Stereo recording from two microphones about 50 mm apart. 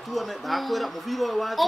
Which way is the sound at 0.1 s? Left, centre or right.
Centre.